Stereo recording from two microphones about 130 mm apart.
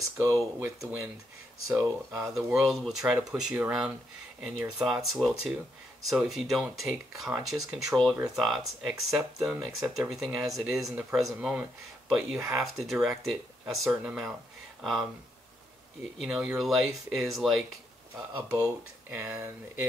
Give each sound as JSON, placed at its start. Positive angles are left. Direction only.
{"t": 0.2, "sound": "speech", "side_deg": -20}
{"t": 2.2, "sound": "speech", "side_deg": 0}
{"t": 16.2, "sound": "speech", "side_deg": -5}